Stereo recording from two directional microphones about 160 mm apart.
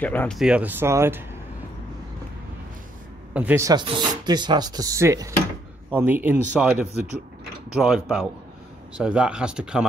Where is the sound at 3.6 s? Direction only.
25° right (ahead or behind).